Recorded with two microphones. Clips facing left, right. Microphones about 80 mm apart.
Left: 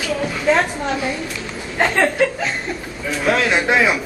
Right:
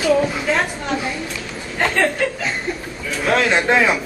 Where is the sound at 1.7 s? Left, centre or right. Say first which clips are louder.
Left 1 dB; centre.